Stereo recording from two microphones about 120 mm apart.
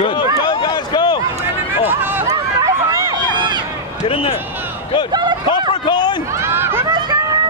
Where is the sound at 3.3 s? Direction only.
40° right (ahead or behind).